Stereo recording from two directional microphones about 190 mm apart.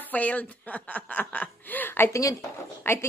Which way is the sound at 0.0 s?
10° left (ahead or behind).